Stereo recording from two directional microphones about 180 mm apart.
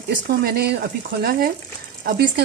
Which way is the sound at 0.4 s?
60° right (ahead or behind).